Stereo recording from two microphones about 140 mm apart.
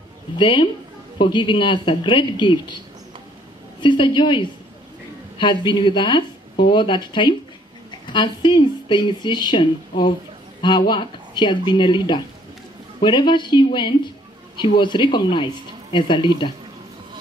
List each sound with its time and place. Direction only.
0.4 s speech: 35° left (ahead or behind)
3.8 s speech: 35° left (ahead or behind)